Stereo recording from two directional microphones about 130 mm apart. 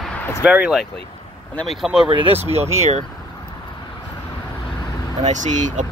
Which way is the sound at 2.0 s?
45° right (ahead or behind).